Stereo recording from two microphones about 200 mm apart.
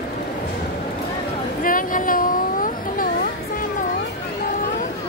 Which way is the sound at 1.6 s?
45° left (ahead or behind).